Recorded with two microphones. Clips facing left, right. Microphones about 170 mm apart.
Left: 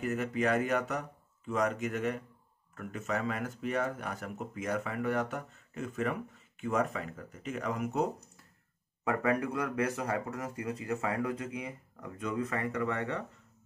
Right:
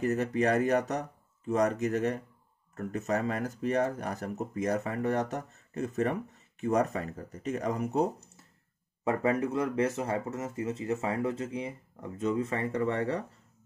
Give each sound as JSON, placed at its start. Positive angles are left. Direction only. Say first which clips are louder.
{"t": 0.0, "sound": "speech", "louder": "right 4 dB", "side_deg": -35}